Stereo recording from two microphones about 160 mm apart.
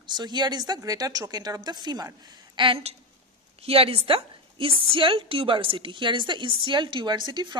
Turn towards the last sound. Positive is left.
turn(degrees=-30)  # may be behind; listen again after turning